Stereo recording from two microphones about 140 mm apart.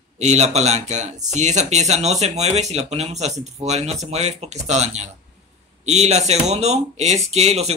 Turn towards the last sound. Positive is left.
turn(degrees=-50)  # may be behind; listen again after turning